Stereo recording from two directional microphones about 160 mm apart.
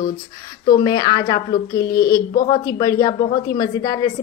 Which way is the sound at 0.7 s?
25° left (ahead or behind).